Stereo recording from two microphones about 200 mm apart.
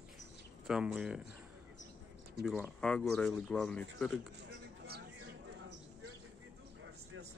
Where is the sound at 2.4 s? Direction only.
Centre (ahead or behind).